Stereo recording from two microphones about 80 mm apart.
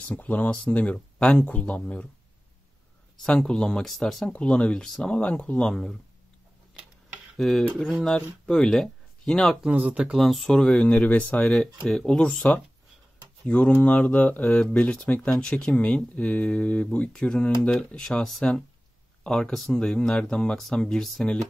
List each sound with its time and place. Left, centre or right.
0.1 s speech: centre
3.2 s speech: centre
4.3 s speech: centre
5.6 s speech: centre
7.3 s speech: centre
9.7 s speech: centre
10.1 s speech: centre
11.5 s speech: centre